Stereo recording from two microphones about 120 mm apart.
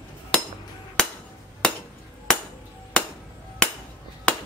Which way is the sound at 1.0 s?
5° left (ahead or behind).